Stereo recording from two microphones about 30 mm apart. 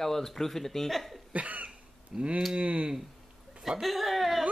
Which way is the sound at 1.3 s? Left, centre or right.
Right.